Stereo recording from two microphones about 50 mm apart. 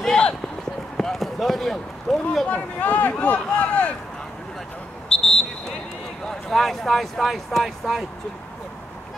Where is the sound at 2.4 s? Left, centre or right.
Left.